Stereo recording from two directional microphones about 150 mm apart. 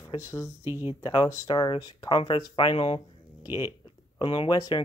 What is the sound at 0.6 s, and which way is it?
Speech, 15° right (ahead or behind).